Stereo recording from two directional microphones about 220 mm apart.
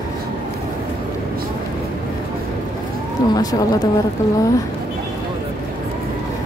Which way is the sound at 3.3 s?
15° left (ahead or behind).